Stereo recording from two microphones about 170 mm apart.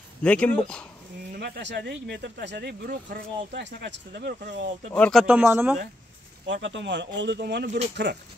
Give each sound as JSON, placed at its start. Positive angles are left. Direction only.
{"t": 0.2, "sound": "speech", "side_deg": 5}
{"t": 1.3, "sound": "speech", "side_deg": -85}
{"t": 3.5, "sound": "speech", "side_deg": -90}
{"t": 4.9, "sound": "speech", "side_deg": 5}
{"t": 5.2, "sound": "speech", "side_deg": -10}
{"t": 6.4, "sound": "speech", "side_deg": -90}